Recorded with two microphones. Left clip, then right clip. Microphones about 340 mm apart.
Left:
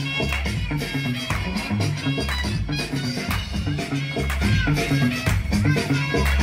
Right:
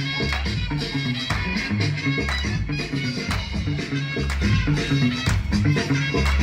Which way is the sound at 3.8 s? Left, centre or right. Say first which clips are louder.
Left 1 dB; left.